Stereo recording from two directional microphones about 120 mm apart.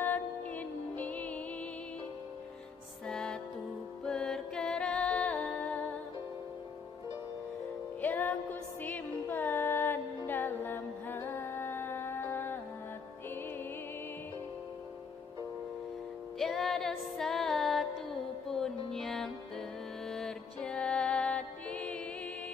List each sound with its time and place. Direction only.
0.0 s music: 15° left (ahead or behind)
3.1 s music: 5° left (ahead or behind)
8.0 s music: 15° left (ahead or behind)
16.3 s music: centre (ahead or behind)